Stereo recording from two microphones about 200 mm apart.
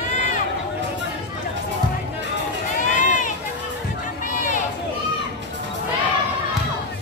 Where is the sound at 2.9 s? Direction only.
35° left (ahead or behind).